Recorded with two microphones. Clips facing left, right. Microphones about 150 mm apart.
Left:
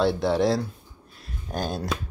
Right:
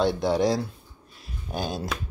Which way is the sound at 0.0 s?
Centre (ahead or behind).